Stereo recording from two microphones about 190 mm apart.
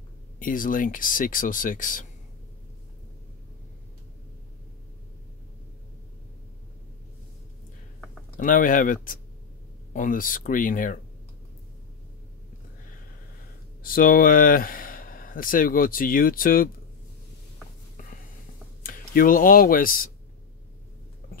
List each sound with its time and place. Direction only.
0.4 s speech: 45° left (ahead or behind)
8.4 s speech: 45° left (ahead or behind)
13.8 s speech: 50° left (ahead or behind)
18.8 s speech: 45° left (ahead or behind)